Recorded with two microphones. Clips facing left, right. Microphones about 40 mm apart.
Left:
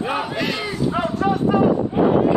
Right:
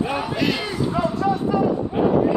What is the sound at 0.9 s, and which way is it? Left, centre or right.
Speech, left.